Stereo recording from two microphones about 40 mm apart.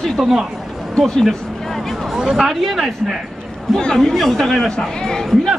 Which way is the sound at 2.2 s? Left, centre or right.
Centre.